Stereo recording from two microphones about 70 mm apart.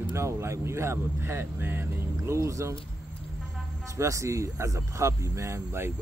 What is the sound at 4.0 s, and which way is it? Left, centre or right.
Speech, right.